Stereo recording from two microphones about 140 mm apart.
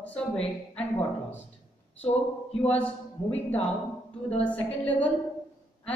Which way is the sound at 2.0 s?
45° left (ahead or behind).